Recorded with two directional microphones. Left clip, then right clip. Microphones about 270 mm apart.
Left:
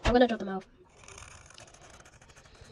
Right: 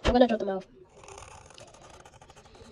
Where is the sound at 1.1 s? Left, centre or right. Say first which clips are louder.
Right 2 dB; centre.